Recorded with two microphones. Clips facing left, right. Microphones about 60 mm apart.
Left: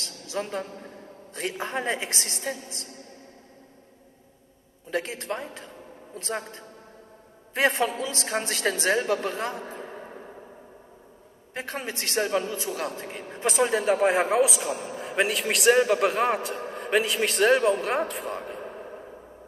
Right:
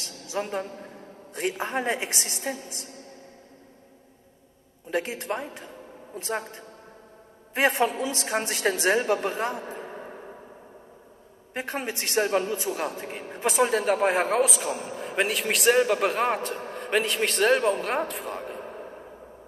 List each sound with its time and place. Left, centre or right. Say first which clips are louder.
0.0 s a sound: right 1 dB; centre
1.6 s a woman's voice: left 1 dB; centre
4.9 s a woman's voice: right 1 dB; centre
11.5 s a woman's voice: right 2 dB; right; by 19.0 s centre